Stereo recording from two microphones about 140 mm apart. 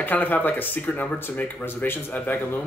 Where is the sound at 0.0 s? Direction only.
10° left (ahead or behind).